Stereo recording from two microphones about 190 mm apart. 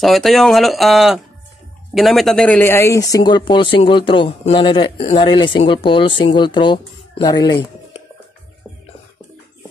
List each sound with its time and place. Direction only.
0.0 s speech: centre (ahead or behind); by 8.0 s 25° left (ahead or behind)